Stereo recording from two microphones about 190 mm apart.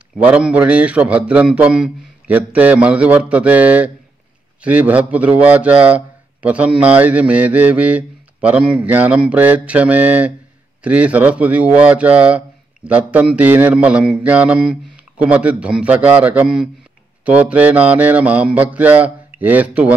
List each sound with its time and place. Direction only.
0.2 s a man's voice: 5° right (ahead or behind)